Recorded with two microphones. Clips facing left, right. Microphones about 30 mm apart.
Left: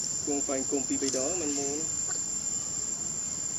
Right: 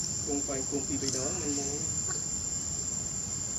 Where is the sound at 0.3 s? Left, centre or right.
Left.